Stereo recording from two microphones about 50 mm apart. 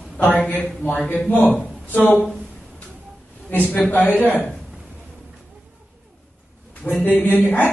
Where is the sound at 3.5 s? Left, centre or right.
Left.